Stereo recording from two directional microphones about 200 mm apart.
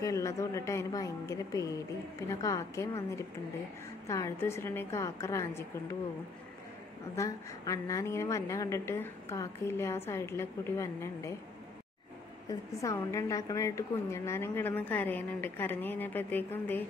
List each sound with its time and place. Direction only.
0.0 s a woman's voice: 15° left (ahead or behind)
7.2 s a woman's voice: 15° left (ahead or behind)
12.4 s a woman's voice: 15° left (ahead or behind)